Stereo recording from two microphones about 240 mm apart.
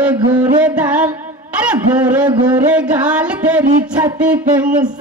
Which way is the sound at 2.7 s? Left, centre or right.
Centre.